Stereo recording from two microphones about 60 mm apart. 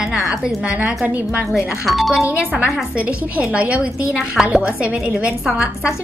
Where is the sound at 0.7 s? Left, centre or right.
Right.